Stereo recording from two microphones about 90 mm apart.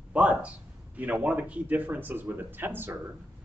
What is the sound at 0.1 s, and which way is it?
A man's voice, 15° right (ahead or behind).